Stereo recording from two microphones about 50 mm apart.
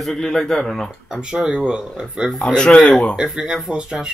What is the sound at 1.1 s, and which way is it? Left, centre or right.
Speech, centre.